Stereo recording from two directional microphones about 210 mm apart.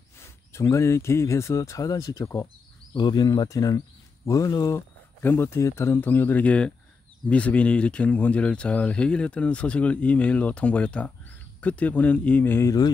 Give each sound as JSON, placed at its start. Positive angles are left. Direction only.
{"t": 0.2, "sound": "speech", "side_deg": 15}